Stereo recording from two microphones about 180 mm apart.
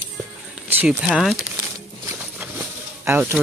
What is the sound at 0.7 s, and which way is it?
Speech, 10° right (ahead or behind).